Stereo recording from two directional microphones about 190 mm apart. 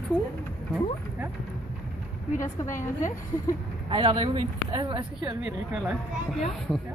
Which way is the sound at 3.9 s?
25° right (ahead or behind).